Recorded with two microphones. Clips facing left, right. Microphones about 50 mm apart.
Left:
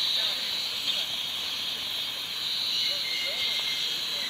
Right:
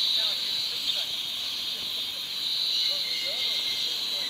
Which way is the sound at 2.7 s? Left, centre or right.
Centre.